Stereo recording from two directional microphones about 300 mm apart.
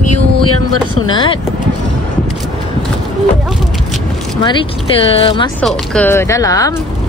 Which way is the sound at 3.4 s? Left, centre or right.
Centre.